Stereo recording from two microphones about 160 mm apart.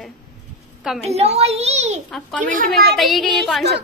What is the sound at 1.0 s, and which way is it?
Speech, 40° right (ahead or behind).